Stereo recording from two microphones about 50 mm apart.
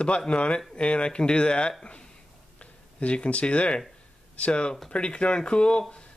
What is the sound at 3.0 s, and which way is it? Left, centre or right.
Speech, left.